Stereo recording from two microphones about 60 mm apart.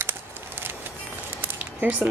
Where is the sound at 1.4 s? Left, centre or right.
Right.